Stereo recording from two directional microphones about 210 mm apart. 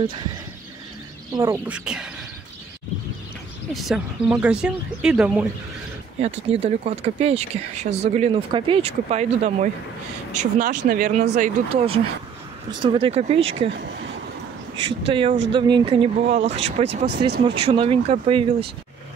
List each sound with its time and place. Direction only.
0.0 s speech: 25° right (ahead or behind)
1.3 s speech: 20° right (ahead or behind)
1.7 s speech: 5° right (ahead or behind)
3.7 s speech: centre (ahead or behind)
6.2 s speech: 30° right (ahead or behind)
14.8 s speech: 25° right (ahead or behind)
17.0 s speech: 50° right (ahead or behind)
17.6 s speech: 25° right (ahead or behind)